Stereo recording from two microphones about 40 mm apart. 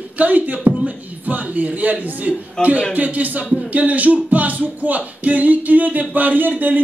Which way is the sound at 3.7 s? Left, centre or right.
Right.